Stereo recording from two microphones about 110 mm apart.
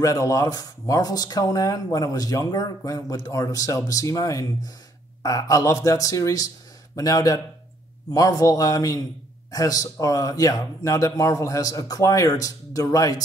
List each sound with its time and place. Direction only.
0.0 s speech: 30° left (ahead or behind)